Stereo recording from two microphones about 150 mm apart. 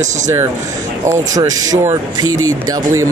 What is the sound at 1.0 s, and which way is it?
Speech, 20° right (ahead or behind).